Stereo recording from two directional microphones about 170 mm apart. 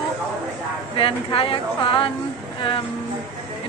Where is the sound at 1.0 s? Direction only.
30° left (ahead or behind).